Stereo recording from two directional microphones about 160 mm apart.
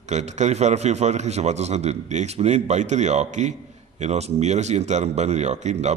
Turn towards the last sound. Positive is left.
turn(degrees=-45)  # may be behind; listen again after turning